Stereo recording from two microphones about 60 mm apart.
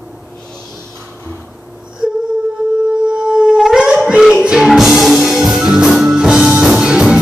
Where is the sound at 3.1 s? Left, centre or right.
Centre.